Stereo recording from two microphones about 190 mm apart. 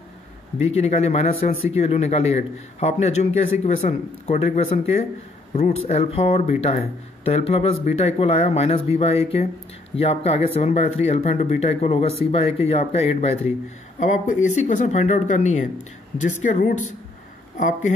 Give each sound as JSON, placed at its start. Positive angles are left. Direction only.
{"t": 0.7, "sound": "speech", "side_deg": 35}